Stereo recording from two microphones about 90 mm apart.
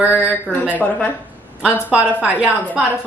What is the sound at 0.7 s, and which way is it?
Speech, 15° left (ahead or behind).